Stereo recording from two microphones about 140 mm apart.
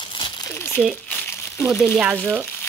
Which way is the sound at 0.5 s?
15° left (ahead or behind).